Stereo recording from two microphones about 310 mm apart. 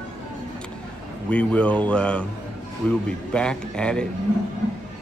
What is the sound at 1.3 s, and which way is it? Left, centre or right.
Speech, centre.